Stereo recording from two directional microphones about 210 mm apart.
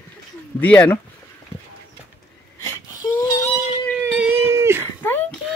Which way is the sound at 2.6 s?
15° left (ahead or behind).